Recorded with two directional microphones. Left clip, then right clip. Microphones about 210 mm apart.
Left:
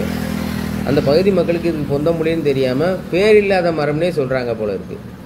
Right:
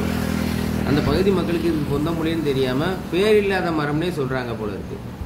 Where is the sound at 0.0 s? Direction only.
45° left (ahead or behind); by 1.0 s 25° left (ahead or behind).